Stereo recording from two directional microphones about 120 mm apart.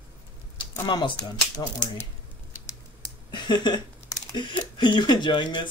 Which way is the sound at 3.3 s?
40° left (ahead or behind).